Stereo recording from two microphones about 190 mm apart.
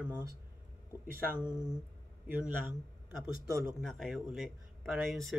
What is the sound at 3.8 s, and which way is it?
Speech, centre (ahead or behind).